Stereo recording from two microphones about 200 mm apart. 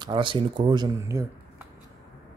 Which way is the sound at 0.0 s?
25° right (ahead or behind).